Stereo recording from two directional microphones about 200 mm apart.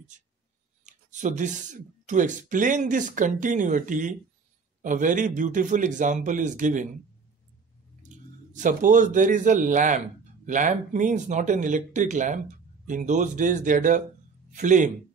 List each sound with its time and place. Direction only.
0.1 s speech: 40° right (ahead or behind)
8.1 s speech: 40° right (ahead or behind)